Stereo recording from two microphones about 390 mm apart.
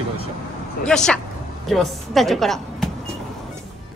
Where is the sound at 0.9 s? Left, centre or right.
Centre.